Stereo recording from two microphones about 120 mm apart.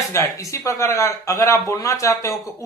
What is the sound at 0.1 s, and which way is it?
Speech, 25° left (ahead or behind).